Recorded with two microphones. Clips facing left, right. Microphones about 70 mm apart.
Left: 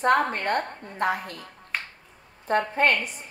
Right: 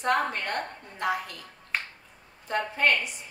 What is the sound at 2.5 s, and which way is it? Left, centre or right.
Speech, left.